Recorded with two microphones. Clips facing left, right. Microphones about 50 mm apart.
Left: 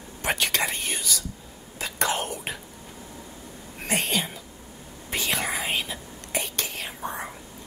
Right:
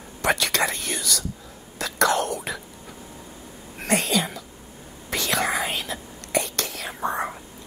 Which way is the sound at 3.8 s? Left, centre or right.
Right.